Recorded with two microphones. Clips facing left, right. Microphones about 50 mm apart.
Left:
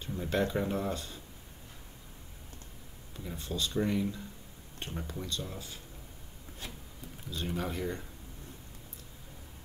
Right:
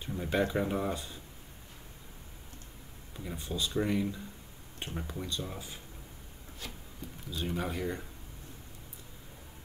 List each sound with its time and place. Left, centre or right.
0.0 s speech: centre
3.2 s speech: centre
7.2 s speech: centre